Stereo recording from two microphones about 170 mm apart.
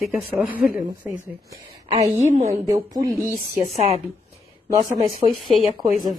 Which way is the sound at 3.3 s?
40° right (ahead or behind).